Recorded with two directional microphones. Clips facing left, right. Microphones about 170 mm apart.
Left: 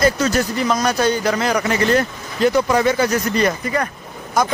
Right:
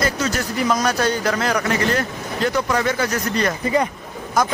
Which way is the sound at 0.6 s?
Centre (ahead or behind).